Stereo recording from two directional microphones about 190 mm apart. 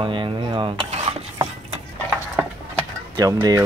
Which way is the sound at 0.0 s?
25° right (ahead or behind).